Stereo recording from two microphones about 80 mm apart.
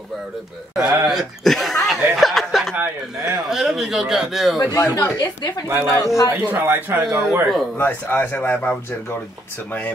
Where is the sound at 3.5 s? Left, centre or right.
Centre.